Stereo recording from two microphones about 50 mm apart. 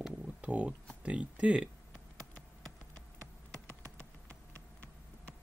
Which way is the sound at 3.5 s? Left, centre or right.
Left.